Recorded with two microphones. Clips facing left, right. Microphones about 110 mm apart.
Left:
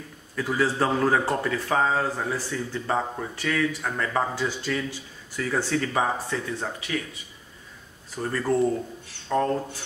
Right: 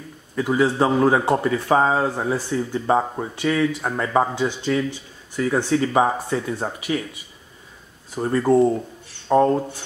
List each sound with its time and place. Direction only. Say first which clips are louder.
0.4 s a man's voice: right 5 dB; 20° right (ahead or behind)
6.3 s speech: right 5 dB; 35° right (ahead or behind)
8.2 s speech: right 7 dB; 25° right (ahead or behind)